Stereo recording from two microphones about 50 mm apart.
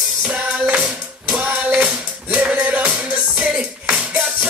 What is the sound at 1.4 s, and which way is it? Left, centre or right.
Music, right.